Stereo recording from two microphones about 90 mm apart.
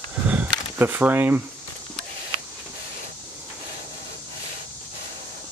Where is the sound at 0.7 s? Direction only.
20° right (ahead or behind).